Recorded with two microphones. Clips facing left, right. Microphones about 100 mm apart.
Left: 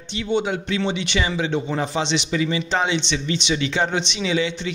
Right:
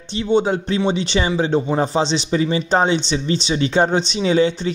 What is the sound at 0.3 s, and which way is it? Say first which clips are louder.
A man's voice: right 5 dB; 35° right (ahead or behind).